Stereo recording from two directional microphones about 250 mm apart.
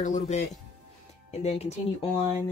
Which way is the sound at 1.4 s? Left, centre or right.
Left.